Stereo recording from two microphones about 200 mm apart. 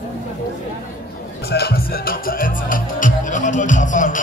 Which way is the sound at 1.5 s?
50° left (ahead or behind).